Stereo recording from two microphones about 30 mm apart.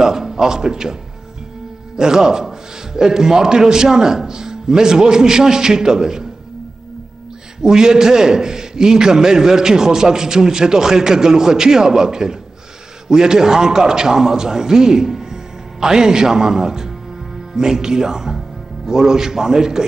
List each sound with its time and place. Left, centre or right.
0.0 s a man's voice: centre
2.0 s a man's voice: right
7.6 s a man's voice: right